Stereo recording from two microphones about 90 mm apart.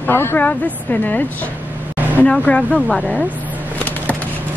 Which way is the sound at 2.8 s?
Centre (ahead or behind).